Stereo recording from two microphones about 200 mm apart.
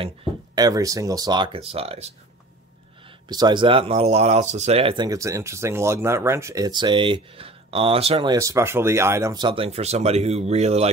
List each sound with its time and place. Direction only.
0.0 s speech: 25° right (ahead or behind)
3.3 s speech: 20° right (ahead or behind)